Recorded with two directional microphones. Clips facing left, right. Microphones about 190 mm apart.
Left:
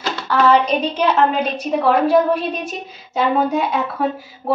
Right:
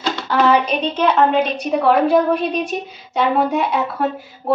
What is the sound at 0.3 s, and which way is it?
Speech, 15° right (ahead or behind).